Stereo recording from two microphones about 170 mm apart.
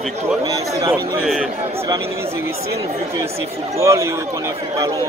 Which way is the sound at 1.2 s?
Centre (ahead or behind).